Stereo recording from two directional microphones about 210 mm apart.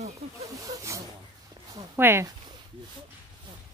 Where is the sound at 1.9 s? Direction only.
10° right (ahead or behind).